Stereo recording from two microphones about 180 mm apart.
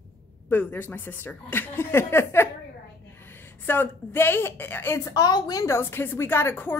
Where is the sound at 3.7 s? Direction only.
10° left (ahead or behind).